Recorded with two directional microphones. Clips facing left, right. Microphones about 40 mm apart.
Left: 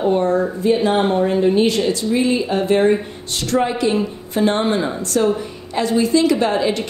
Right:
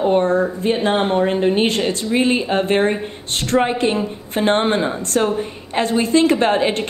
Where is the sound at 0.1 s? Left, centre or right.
Right.